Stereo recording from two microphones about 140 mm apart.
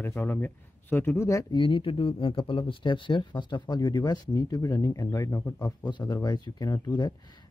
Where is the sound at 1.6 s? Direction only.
35° left (ahead or behind).